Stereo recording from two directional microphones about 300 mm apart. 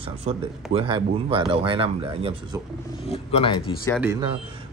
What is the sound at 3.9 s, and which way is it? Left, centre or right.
Speech, centre.